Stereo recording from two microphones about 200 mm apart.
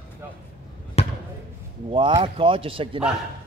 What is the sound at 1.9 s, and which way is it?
Speech, 25° right (ahead or behind).